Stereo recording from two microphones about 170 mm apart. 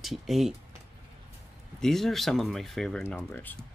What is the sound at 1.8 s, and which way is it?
Speech, centre (ahead or behind).